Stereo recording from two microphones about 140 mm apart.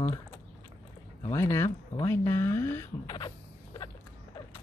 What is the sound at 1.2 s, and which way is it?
Speech, 20° left (ahead or behind).